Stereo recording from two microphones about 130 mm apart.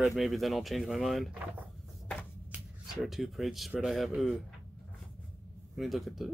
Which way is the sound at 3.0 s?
Centre (ahead or behind).